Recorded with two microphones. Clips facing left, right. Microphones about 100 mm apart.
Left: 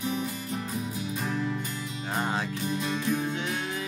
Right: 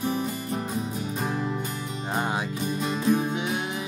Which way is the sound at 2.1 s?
15° right (ahead or behind).